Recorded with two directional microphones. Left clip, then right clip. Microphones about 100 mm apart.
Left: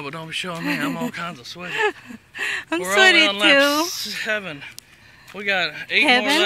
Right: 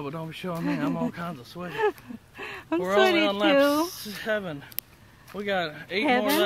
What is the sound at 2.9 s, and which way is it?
Speech, 15° left (ahead or behind).